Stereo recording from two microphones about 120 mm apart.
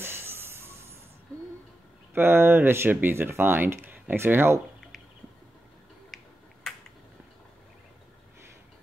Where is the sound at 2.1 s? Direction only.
20° right (ahead or behind).